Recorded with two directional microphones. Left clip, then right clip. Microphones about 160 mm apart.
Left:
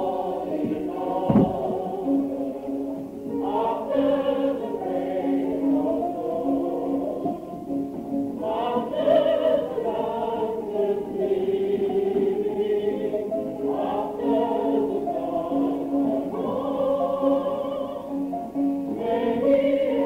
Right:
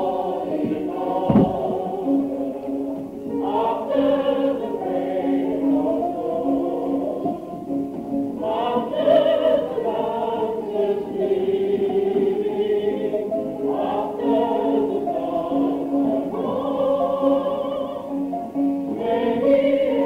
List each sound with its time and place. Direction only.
1.2 s chant: 30° right (ahead or behind)
3.5 s choir: 30° right (ahead or behind)
5.2 s music: 30° right (ahead or behind)
8.5 s music: 30° right (ahead or behind)
10.4 s choir: 30° right (ahead or behind)
15.3 s music: 30° right (ahead or behind)
16.7 s opera: 30° right (ahead or behind)
19.0 s music: 30° right (ahead or behind)